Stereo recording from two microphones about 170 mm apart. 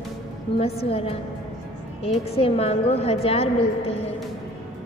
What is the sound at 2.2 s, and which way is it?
A woman's voice, 35° left (ahead or behind).